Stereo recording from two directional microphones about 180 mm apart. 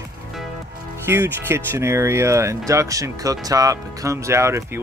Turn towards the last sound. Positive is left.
turn(degrees=-15)  # may be behind; listen again after turning